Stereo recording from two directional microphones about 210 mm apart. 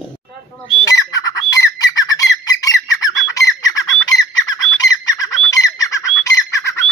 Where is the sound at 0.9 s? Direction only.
15° left (ahead or behind).